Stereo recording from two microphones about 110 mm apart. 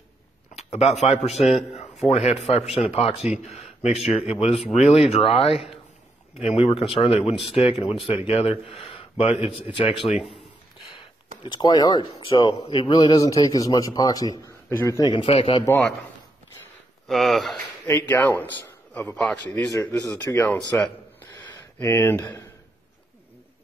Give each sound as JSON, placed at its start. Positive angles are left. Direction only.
{"t": 0.6, "sound": "speech", "side_deg": 75}
{"t": 2.0, "sound": "a man's voice", "side_deg": 70}
{"t": 3.4, "sound": "speech", "side_deg": 75}
{"t": 4.3, "sound": "a man's voice", "side_deg": 65}
{"t": 9.9, "sound": "speech", "side_deg": 0}
{"t": 11.4, "sound": "a man's voice", "side_deg": 45}
{"t": 15.1, "sound": "a man's voice", "side_deg": 55}
{"t": 17.1, "sound": "speech", "side_deg": 0}
{"t": 17.8, "sound": "a man's voice", "side_deg": 25}
{"t": 18.9, "sound": "speech", "side_deg": 10}
{"t": 19.7, "sound": "a man's voice", "side_deg": 30}
{"t": 22.2, "sound": "a man's voice", "side_deg": 35}